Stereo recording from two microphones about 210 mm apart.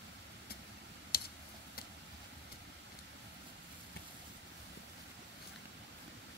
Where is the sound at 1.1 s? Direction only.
45° left (ahead or behind).